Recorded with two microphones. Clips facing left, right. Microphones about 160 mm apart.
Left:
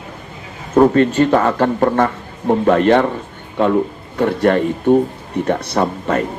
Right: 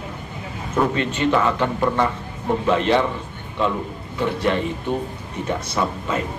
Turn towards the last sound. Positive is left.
turn(degrees=60)  # may be behind; listen again after turning